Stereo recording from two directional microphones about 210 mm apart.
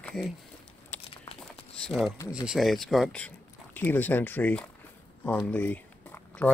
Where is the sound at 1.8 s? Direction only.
Centre (ahead or behind).